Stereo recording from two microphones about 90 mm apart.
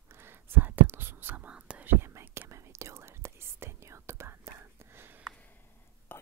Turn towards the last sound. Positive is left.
turn(degrees=20)  # may be behind; listen again after turning